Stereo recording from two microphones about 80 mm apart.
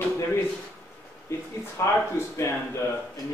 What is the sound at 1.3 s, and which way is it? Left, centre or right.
Speech, left.